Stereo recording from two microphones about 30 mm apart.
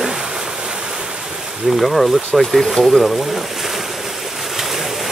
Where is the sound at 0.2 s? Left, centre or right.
Right.